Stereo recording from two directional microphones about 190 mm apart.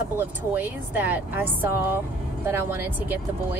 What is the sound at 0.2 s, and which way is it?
Speech, 10° right (ahead or behind).